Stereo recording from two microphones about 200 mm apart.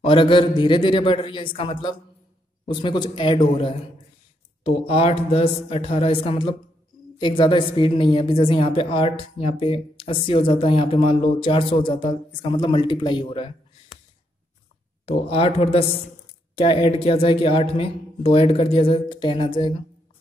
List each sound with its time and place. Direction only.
0.0 s a woman's voice: 25° left (ahead or behind)
15.0 s a woman's voice: 30° left (ahead or behind)